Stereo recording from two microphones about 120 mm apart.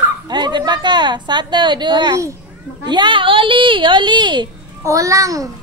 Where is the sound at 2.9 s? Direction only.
40° right (ahead or behind).